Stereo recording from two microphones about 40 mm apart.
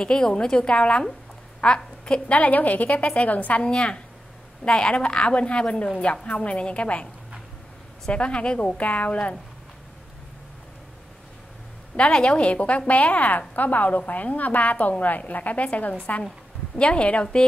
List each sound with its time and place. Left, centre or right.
0.0 s a woman's voice: centre
0.6 s a woman's voice: left
2.3 s a woman's voice: left
3.6 s a woman's voice: left
8.1 s a woman's voice: left
12.1 s a woman's voice: left